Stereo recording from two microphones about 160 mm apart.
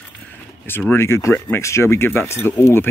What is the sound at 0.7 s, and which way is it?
Speech, 15° left (ahead or behind).